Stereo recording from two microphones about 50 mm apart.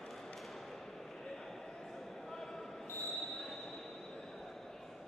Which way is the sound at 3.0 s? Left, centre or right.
Centre.